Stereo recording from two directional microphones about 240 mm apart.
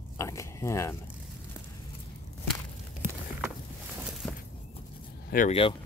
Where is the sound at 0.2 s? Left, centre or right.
Centre.